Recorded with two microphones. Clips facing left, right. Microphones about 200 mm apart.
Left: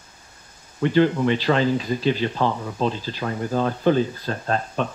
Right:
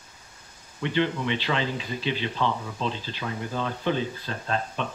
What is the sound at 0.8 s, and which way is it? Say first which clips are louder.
Speech: left 8 dB; 45° left (ahead or behind).